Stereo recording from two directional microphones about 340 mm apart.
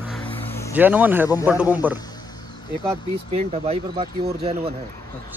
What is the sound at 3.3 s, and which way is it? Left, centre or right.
Speech, centre.